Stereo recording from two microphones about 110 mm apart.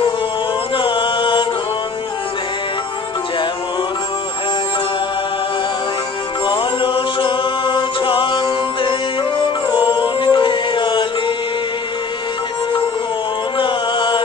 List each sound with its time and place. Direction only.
0.7 s music: 50° left (ahead or behind)
6.4 s mantra: 50° left (ahead or behind)
9.4 s music: 50° left (ahead or behind)
13.6 s chant: 45° left (ahead or behind)